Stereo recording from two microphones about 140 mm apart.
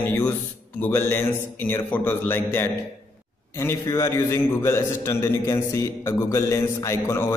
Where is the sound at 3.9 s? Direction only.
20° left (ahead or behind).